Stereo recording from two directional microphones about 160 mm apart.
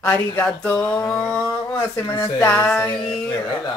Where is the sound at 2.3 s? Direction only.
10° left (ahead or behind).